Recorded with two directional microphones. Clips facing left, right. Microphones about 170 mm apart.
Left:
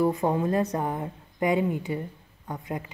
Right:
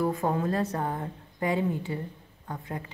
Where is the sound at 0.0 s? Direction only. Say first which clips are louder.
Left 3 dB; 15° left (ahead or behind).